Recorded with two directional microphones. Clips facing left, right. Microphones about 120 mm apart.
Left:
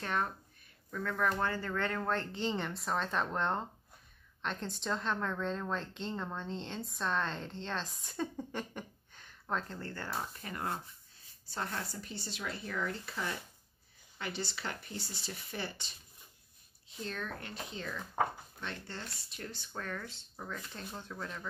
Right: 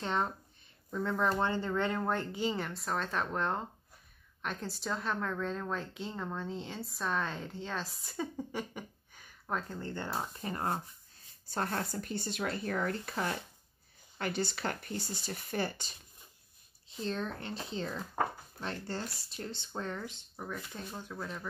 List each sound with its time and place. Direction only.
0.0 s a woman's voice: 20° right (ahead or behind)
10.5 s speech: 35° right (ahead or behind)
11.4 s speech: 50° right (ahead or behind)
16.9 s speech: 30° right (ahead or behind); by 21.5 s 10° right (ahead or behind)